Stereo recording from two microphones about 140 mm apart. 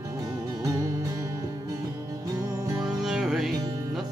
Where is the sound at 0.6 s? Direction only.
25° right (ahead or behind).